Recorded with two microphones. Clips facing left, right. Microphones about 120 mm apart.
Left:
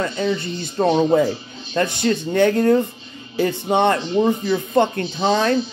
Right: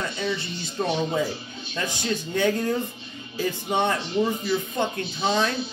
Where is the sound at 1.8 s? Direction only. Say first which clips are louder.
Left 9 dB; 55° left (ahead or behind).